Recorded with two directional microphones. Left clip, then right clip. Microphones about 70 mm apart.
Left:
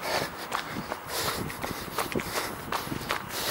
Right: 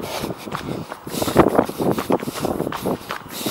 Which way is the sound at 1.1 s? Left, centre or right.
Right.